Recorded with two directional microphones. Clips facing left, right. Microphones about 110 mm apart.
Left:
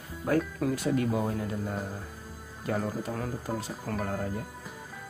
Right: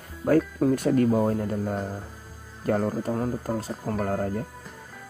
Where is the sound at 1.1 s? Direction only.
40° right (ahead or behind).